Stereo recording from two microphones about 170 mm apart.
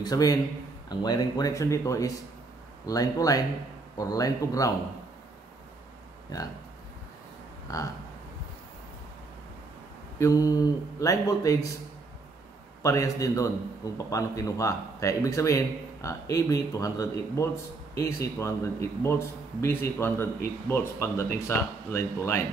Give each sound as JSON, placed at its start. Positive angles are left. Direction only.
{"t": 0.0, "sound": "a man's voice", "side_deg": 20}
{"t": 7.7, "sound": "a man's voice", "side_deg": 20}
{"t": 10.1, "sound": "a man's voice", "side_deg": 20}
{"t": 12.8, "sound": "a man's voice", "side_deg": 20}